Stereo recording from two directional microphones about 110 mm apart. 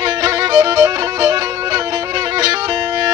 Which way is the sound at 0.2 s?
40° right (ahead or behind).